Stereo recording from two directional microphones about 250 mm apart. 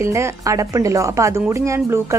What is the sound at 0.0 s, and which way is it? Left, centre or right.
A woman's voice, centre.